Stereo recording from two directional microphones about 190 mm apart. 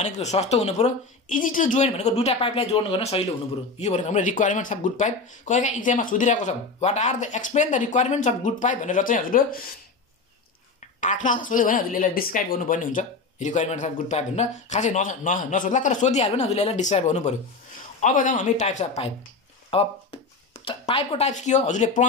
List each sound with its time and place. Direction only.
0.0 s a woman's voice: 35° left (ahead or behind)
11.0 s a woman's voice: 40° left (ahead or behind)